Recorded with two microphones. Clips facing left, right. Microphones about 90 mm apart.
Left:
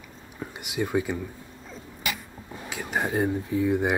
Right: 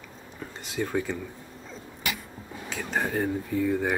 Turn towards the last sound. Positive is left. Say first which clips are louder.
# left 2 dB
turn(degrees=15)  # may be behind; listen again after turning